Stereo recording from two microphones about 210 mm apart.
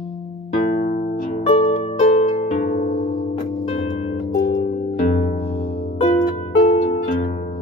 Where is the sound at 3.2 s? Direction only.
30° left (ahead or behind).